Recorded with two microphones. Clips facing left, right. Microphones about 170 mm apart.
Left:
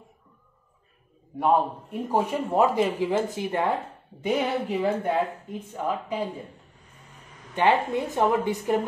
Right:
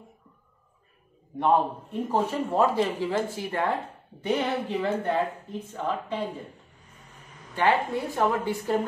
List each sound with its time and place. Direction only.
1.3 s a man's voice: 5° left (ahead or behind)
7.5 s a woman's voice: 20° left (ahead or behind)